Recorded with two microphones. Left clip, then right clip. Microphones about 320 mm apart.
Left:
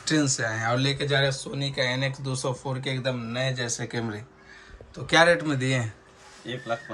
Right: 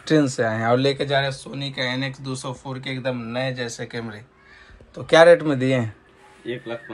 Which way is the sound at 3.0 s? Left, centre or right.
Centre.